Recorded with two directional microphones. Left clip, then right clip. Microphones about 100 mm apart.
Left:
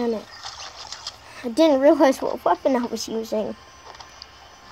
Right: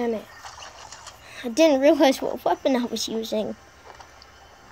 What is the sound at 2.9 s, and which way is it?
Speech, 20° right (ahead or behind).